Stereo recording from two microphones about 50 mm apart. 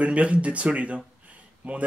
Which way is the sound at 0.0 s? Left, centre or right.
Right.